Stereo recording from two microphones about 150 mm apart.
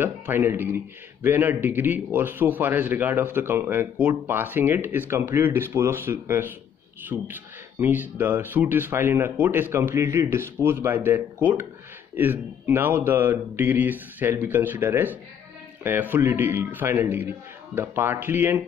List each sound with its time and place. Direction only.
0.0 s speech: 15° right (ahead or behind)